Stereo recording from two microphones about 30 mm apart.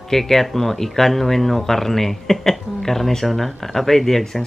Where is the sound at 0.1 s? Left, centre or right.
Centre.